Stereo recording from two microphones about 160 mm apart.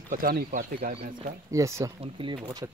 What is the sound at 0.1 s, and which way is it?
Speech, 65° right (ahead or behind).